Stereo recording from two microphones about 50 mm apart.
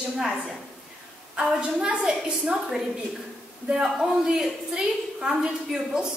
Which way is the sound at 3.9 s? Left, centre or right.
Centre.